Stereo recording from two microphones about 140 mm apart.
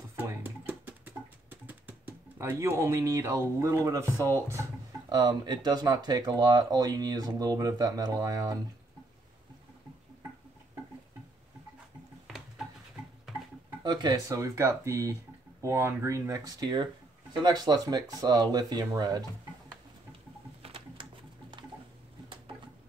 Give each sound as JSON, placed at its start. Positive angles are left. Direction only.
{"t": 0.2, "sound": "music", "side_deg": -15}
{"t": 1.5, "sound": "speech", "side_deg": -10}
{"t": 13.8, "sound": "speech", "side_deg": -30}
{"t": 20.6, "sound": "patter", "side_deg": -40}